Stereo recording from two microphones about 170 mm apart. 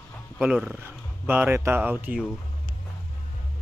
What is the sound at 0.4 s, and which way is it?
Speech, 5° right (ahead or behind).